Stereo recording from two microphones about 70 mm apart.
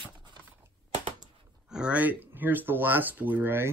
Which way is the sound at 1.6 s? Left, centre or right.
Centre.